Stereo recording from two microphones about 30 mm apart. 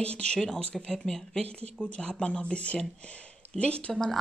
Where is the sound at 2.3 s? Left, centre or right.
Left.